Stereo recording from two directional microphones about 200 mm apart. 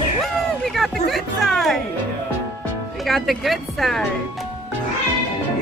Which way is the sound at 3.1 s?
Centre (ahead or behind).